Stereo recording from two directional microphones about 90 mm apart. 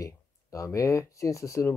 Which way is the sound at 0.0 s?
35° left (ahead or behind).